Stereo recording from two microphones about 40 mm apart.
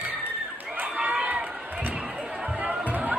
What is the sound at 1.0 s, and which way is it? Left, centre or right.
Run, right.